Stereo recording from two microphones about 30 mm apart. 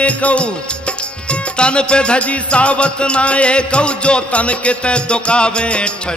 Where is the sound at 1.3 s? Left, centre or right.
Left.